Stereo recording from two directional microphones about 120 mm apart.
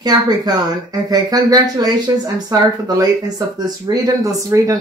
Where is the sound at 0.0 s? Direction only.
35° right (ahead or behind).